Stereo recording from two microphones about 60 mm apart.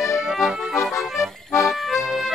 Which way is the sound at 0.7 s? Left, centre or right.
Left.